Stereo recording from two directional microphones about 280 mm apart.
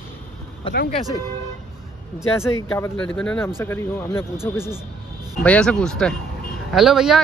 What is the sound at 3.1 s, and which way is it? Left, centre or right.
Speech, centre.